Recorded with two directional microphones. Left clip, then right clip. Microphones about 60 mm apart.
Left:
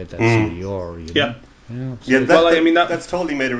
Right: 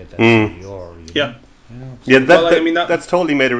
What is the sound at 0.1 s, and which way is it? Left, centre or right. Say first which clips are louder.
Speech: right 5 dB; centre.